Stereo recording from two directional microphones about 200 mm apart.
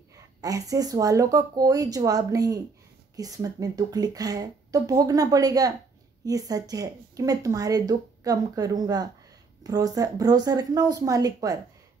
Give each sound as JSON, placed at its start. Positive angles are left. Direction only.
{"t": 0.1, "sound": "speech", "side_deg": -15}